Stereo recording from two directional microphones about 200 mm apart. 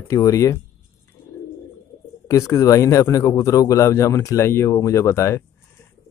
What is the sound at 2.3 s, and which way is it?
Speech, 15° left (ahead or behind).